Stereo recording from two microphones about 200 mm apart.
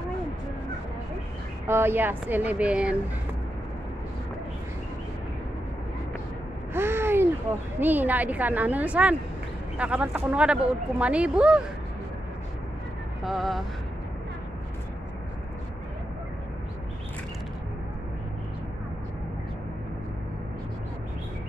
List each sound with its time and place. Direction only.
1.7 s speech: 10° right (ahead or behind)
6.7 s a sound: 10° right (ahead or behind)
7.8 s speech: 10° right (ahead or behind)
13.2 s speech: centre (ahead or behind)